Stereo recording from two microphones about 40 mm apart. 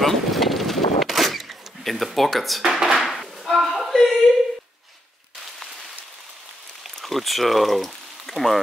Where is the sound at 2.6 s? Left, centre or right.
Centre.